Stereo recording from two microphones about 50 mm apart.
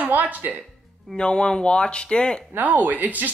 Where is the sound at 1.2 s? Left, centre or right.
Centre.